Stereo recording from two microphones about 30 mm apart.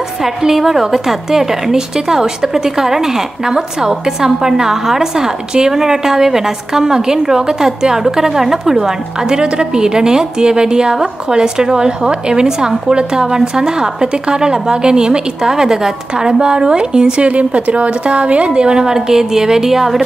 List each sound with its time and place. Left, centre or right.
0.2 s a woman's voice: centre; by 17.1 s right
17.2 s a woman's voice: right
18.5 s a woman's voice: right; by 20.1 s centre